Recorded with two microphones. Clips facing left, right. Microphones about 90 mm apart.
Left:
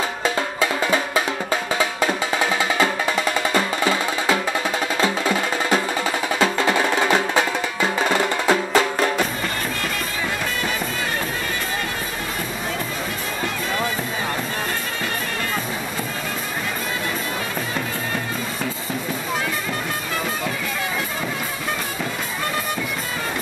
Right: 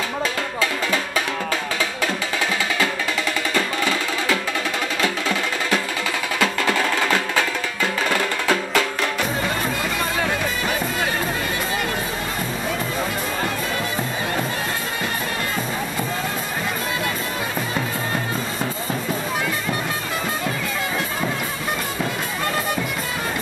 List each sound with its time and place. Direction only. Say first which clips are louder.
0.2 s music: left 2 dB; 25° left (ahead or behind)